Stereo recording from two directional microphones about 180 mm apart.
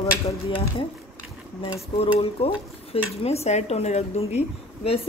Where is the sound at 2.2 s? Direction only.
30° left (ahead or behind).